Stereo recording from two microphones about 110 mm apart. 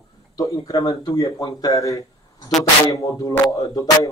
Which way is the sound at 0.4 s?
30° left (ahead or behind).